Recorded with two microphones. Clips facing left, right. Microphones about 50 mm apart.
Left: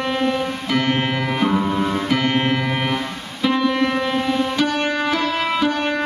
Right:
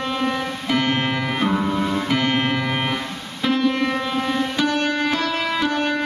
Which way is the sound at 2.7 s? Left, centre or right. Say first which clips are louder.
Left 2 dB; centre.